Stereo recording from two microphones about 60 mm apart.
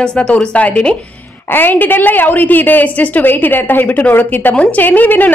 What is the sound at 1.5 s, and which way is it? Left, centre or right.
A woman's voice, left.